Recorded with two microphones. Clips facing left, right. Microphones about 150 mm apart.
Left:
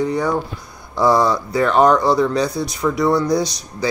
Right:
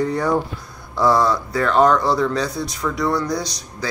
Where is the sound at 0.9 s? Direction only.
20° left (ahead or behind).